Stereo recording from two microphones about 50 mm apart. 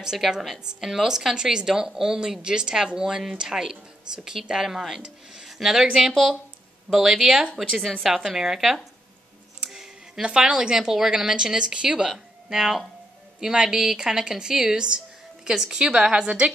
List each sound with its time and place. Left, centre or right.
0.3 s a woman's voice: centre
9.6 s music: centre
10.2 s speech: centre
12.1 s speech: centre